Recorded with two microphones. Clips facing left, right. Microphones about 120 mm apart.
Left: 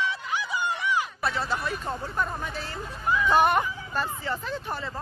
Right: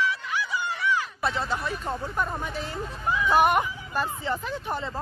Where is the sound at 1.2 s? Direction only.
20° right (ahead or behind).